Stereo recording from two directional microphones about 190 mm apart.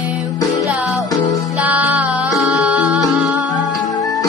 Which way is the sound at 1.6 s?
10° right (ahead or behind).